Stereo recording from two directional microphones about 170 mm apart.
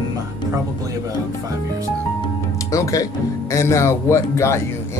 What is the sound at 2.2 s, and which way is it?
Speech, 20° left (ahead or behind).